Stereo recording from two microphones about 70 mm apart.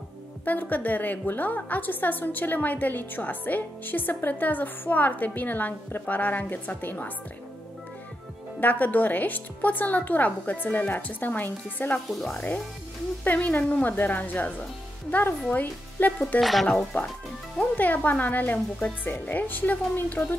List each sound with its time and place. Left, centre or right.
0.5 s a woman's voice: left
8.5 s a woman's voice: left
12.1 s speech: centre
12.4 s a woman's voice: left
16.3 s speech: centre
16.9 s a woman's voice: left